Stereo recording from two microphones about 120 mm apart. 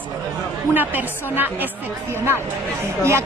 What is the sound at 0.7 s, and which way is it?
Speech, 15° right (ahead or behind).